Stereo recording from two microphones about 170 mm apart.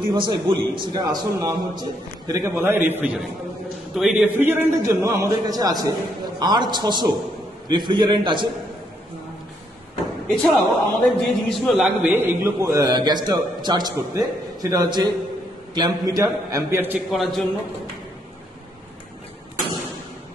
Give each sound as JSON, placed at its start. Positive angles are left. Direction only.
{"t": 0.1, "sound": "a man's voice", "side_deg": -25}
{"t": 10.3, "sound": "a man's voice", "side_deg": 0}
{"t": 17.1, "sound": "a man's voice", "side_deg": 0}